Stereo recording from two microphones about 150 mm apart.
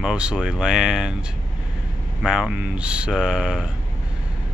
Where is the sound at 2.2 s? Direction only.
5° right (ahead or behind).